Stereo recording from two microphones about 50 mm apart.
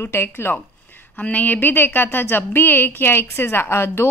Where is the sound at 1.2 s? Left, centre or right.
Left.